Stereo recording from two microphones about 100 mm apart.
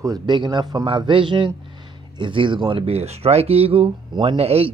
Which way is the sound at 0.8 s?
55° right (ahead or behind).